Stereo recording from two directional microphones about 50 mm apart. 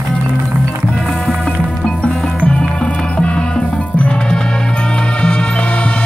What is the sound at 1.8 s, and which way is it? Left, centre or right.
Music, centre.